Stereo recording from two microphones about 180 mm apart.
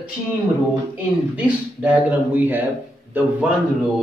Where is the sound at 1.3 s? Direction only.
10° right (ahead or behind).